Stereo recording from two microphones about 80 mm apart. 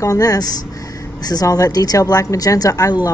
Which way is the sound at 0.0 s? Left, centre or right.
Left.